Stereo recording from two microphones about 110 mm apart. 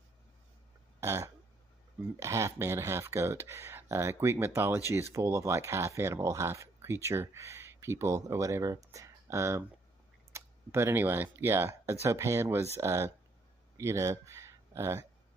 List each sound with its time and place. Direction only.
1.0 s speech: 25° right (ahead or behind)